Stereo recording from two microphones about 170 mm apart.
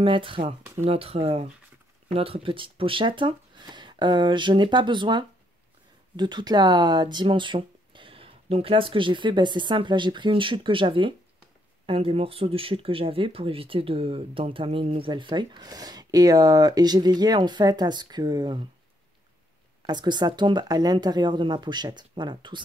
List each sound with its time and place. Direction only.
0.0 s speech: 30° right (ahead or behind)
19.9 s speech: 25° right (ahead or behind)